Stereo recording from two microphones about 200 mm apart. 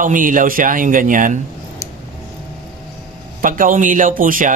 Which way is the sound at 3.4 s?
40° right (ahead or behind).